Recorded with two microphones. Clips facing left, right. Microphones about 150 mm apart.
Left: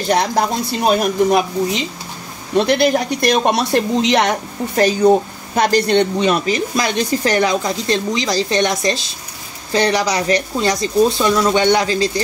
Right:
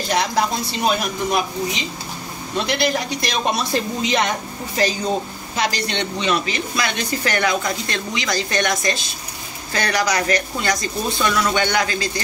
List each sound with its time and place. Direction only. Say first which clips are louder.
0.1 s speech: left 4 dB; 40° left (ahead or behind)
2.5 s speech: left 7 dB; 55° left (ahead or behind); by 12.1 s 30° left (ahead or behind)